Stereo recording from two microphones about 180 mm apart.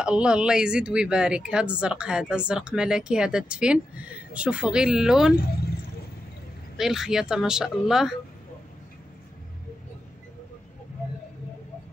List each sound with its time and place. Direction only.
0.0 s speech: 5° right (ahead or behind)
6.8 s speech: 5° right (ahead or behind)